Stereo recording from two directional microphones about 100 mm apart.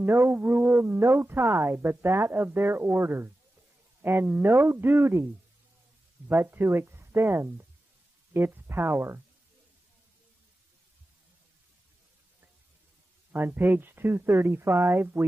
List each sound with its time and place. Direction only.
0.0 s speech: 25° right (ahead or behind)
13.3 s speech: 20° right (ahead or behind)